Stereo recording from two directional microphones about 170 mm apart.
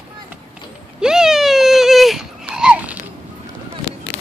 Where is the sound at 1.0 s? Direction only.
5° right (ahead or behind).